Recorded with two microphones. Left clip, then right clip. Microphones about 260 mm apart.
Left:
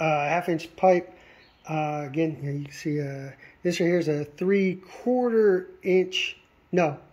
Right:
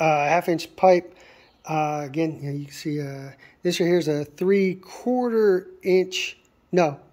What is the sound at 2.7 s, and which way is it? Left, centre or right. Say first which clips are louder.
Speech: left 1 dB; right.